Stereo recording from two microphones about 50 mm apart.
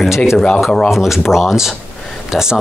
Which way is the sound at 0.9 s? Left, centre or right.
Centre.